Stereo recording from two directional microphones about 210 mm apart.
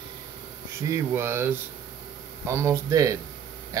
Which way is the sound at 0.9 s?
10° right (ahead or behind).